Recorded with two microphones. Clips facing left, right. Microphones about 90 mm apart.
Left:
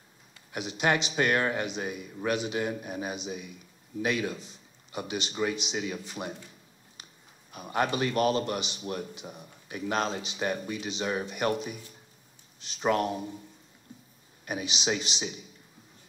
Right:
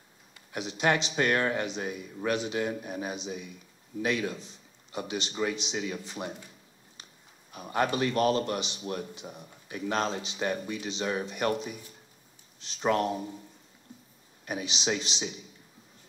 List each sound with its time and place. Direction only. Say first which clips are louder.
0.5 s a man's voice: even; 10° left (ahead or behind)
7.5 s a man's voice: even; 5° left (ahead or behind)
12.8 s speech: even; 5° left (ahead or behind)
14.4 s a man's voice: even; 10° left (ahead or behind)